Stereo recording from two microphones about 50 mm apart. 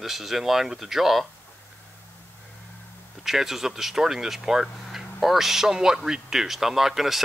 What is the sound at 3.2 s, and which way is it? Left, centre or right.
Speech, centre.